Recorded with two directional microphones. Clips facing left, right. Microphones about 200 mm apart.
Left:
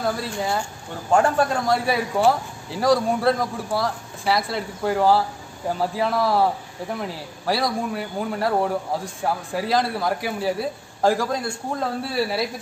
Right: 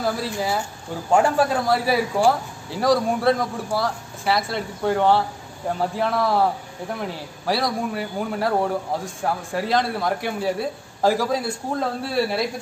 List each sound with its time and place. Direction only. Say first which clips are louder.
0.0 s a man's voice: right 1 dB; centre (ahead or behind)